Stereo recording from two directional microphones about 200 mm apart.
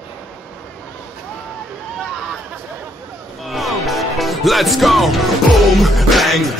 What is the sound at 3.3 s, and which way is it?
Speech, centre (ahead or behind).